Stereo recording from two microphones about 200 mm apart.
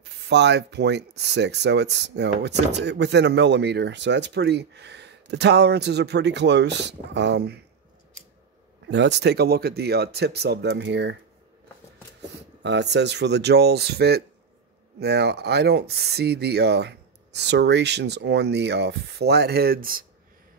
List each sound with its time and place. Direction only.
0.0 s speech: 60° right (ahead or behind)
8.9 s speech: 60° right (ahead or behind)
12.6 s speech: 60° right (ahead or behind)